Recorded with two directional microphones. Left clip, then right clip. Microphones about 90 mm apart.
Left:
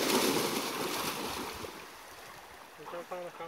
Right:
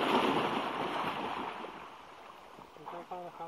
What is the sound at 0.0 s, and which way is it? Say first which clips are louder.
Boat: even; 45° left (ahead or behind).